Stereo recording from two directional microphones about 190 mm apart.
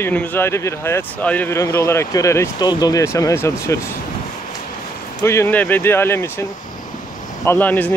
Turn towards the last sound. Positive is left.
turn(degrees=10)  # may be behind; listen again after turning